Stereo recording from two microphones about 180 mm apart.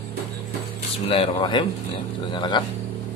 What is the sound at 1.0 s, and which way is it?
A man's voice, 30° left (ahead or behind).